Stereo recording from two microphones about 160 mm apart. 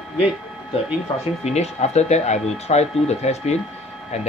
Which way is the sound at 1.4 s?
45° left (ahead or behind).